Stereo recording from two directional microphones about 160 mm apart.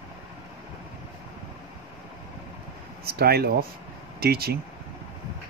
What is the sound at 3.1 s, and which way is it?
Speech, 80° right.